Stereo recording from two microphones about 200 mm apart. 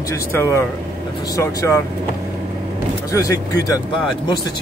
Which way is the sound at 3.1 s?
15° left (ahead or behind).